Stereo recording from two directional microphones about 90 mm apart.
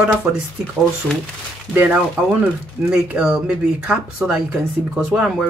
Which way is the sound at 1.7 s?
20° right (ahead or behind).